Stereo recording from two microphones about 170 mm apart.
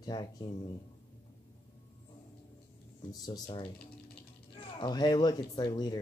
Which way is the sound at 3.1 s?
25° left (ahead or behind).